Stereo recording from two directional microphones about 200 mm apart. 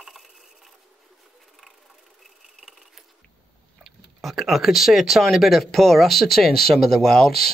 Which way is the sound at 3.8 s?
Centre (ahead or behind).